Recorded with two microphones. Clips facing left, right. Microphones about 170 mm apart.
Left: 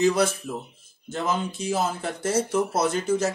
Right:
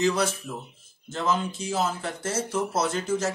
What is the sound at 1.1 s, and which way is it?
Speech, 15° left (ahead or behind).